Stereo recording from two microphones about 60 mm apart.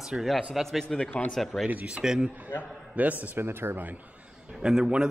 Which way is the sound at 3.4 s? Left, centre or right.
Right.